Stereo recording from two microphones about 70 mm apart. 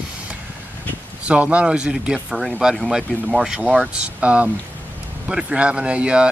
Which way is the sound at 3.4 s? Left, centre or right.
Centre.